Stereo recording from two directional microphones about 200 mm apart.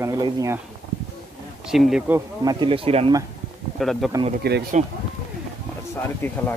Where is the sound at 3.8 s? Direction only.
Centre (ahead or behind).